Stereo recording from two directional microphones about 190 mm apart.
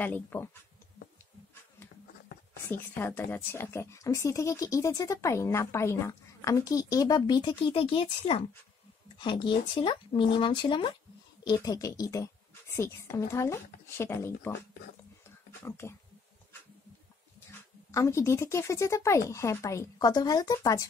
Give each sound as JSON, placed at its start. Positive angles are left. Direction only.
{"t": 0.0, "sound": "speech", "side_deg": 10}
{"t": 2.5, "sound": "speech", "side_deg": 10}
{"t": 17.5, "sound": "speech", "side_deg": 15}